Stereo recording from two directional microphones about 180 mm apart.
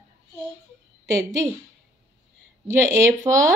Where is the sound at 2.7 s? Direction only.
15° right (ahead or behind).